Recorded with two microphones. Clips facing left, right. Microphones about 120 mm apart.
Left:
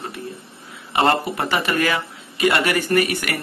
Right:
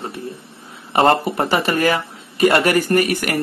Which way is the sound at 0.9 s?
35° right (ahead or behind).